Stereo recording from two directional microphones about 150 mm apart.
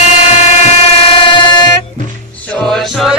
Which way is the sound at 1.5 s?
30° left (ahead or behind).